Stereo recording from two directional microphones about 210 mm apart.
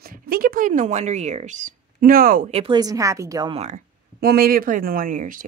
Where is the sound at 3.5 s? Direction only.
30° right (ahead or behind).